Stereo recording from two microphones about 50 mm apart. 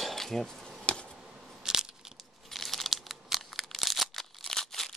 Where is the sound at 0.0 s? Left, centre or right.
Centre.